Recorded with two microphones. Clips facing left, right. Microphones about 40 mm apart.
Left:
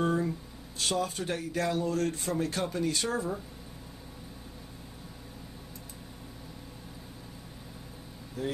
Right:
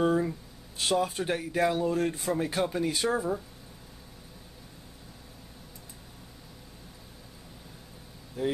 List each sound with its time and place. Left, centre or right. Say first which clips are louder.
0.0 s a sound: right 3 dB; centre
0.7 s speech: right 3 dB; centre
8.4 s speech: right 4 dB; centre